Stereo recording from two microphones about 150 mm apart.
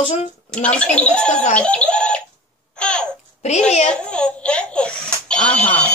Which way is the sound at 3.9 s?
5° left (ahead or behind).